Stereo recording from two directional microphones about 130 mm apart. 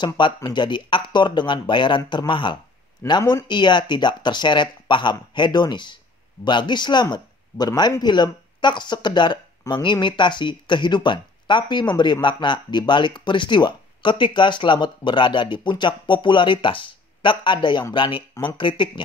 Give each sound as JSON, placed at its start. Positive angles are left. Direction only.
{"t": 0.0, "sound": "speech", "side_deg": 35}